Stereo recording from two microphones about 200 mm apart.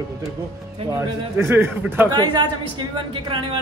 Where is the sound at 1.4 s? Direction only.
10° right (ahead or behind).